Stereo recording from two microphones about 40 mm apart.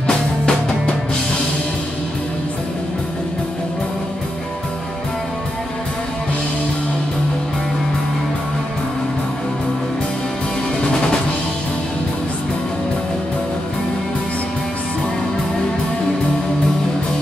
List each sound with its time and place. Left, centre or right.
0.0 s music: left